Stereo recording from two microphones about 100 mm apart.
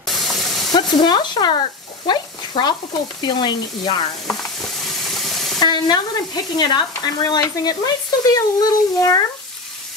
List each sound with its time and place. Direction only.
0.0 s hiss: centre (ahead or behind)
1.0 s speech: 45° left (ahead or behind)
2.0 s a sound: 50° left (ahead or behind)
3.2 s speech: 45° left (ahead or behind)
4.3 s ratchet: centre (ahead or behind)
5.6 s speech: 45° left (ahead or behind)